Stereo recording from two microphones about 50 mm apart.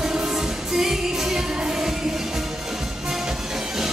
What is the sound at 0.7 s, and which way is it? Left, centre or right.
Music, centre.